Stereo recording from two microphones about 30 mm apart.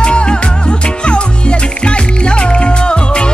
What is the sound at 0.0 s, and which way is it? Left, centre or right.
Music, left.